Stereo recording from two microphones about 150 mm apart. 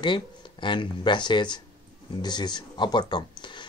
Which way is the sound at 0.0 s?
30° left (ahead or behind).